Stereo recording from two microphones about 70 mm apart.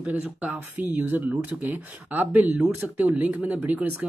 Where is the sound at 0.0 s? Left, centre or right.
Centre.